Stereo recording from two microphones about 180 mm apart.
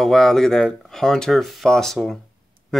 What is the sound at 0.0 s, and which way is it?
Speech, 5° left (ahead or behind).